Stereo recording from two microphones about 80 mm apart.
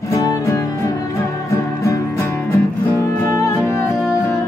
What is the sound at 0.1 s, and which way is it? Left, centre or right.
Music, left.